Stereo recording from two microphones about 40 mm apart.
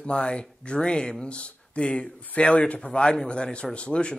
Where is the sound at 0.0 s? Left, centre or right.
Left.